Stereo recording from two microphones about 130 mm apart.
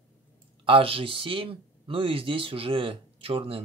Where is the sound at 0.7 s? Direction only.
45° right (ahead or behind).